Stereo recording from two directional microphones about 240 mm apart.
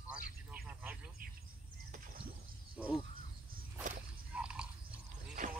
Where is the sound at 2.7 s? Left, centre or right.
Centre.